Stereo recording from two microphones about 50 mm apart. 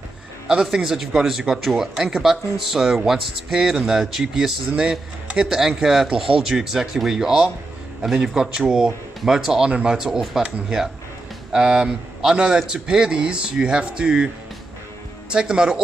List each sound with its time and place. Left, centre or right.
0.5 s a man's voice: centre
15.3 s a man's voice: centre